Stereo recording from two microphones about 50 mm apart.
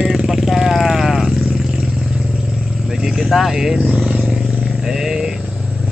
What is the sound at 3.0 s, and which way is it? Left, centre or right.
Vehicle, centre.